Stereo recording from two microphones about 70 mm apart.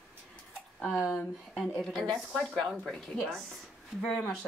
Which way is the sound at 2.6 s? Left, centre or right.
Centre.